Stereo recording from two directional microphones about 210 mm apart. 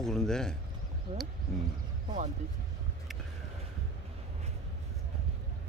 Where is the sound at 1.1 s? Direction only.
30° right (ahead or behind).